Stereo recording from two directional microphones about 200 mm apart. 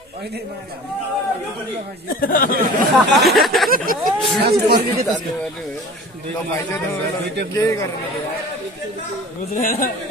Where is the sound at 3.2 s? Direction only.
Centre (ahead or behind).